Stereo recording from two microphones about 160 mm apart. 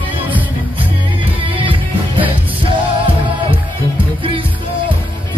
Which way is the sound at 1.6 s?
35° right (ahead or behind).